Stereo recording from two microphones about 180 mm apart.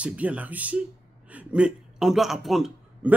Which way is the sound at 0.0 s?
5° right (ahead or behind).